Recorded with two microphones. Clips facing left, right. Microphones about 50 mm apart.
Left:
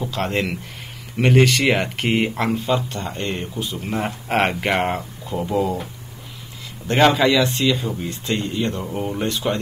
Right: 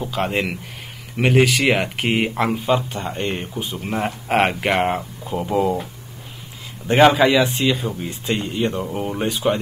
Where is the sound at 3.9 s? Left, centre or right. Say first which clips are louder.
Right 2 dB; centre.